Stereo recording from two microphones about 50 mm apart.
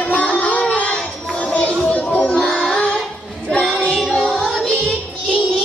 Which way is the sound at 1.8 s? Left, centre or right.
Left.